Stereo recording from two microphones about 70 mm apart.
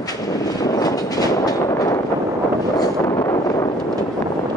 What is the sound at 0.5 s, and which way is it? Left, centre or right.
Vehicle, left.